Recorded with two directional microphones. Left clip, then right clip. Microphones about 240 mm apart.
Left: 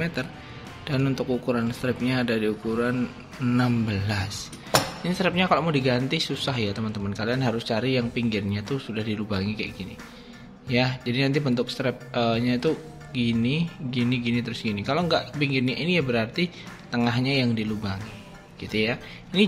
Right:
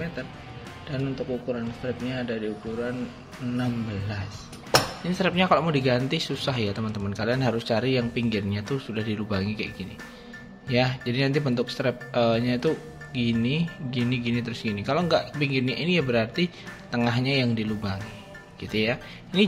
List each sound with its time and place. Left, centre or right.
0.0 s music: left
0.8 s speech: left
4.3 s speech: centre